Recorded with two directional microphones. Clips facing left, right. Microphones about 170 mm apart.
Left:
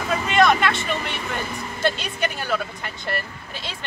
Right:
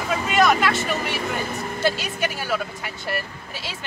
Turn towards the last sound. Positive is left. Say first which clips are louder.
# even
turn(degrees=-5)  # may be behind; listen again after turning